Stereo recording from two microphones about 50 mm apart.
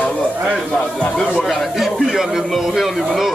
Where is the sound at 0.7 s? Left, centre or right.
Centre.